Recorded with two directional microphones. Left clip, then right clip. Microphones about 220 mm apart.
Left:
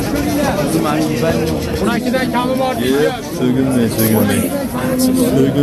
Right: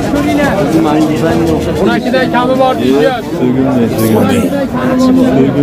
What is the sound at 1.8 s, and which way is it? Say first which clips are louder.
Speech: right 5 dB; 35° right (ahead or behind).